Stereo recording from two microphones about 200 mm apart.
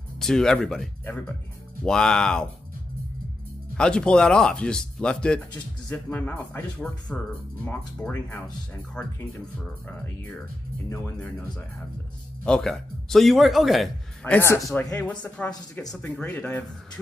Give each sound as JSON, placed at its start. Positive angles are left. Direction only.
{"t": 0.2, "sound": "a man's voice", "side_deg": 5}
{"t": 3.7, "sound": "a man's voice", "side_deg": 5}
{"t": 15.8, "sound": "speech", "side_deg": 20}
{"t": 16.2, "sound": "speech", "side_deg": 10}